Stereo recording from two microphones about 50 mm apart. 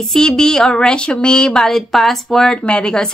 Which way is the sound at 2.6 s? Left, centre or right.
Centre.